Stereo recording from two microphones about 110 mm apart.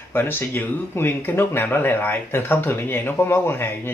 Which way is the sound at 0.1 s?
20° left (ahead or behind).